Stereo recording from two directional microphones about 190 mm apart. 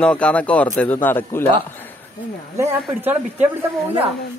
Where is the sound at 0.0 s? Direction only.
5° left (ahead or behind).